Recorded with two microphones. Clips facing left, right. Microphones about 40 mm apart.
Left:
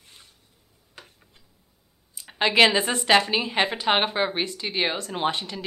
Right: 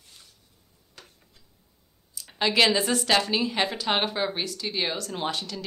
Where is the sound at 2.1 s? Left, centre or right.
Left.